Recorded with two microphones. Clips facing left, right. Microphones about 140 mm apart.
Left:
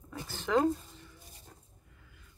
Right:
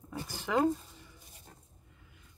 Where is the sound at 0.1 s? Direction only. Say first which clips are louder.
Left 2 dB; 10° right (ahead or behind).